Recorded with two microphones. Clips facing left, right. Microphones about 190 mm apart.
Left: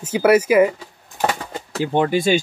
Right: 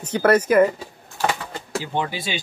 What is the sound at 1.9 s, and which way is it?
Speech, 50° left (ahead or behind).